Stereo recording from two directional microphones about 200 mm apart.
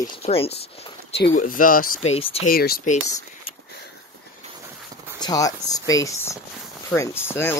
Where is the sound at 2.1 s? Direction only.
30° left (ahead or behind).